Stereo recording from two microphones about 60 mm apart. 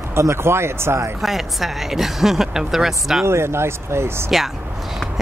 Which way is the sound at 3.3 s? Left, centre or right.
Right.